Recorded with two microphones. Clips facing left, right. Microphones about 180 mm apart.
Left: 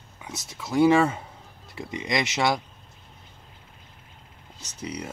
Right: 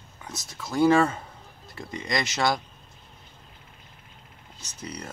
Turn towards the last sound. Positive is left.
turn(degrees=10)  # may be behind; listen again after turning